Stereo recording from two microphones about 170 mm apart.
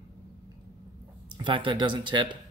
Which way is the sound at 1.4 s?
30° right (ahead or behind).